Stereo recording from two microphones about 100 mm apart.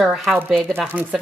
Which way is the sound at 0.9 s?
15° right (ahead or behind).